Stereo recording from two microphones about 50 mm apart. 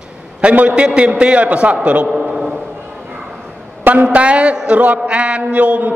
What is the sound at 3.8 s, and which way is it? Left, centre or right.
A man's voice, right.